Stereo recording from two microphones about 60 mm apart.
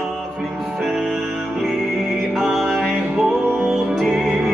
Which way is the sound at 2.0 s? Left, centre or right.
Centre.